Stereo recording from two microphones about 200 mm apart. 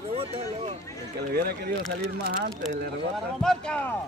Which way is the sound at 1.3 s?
50° right (ahead or behind).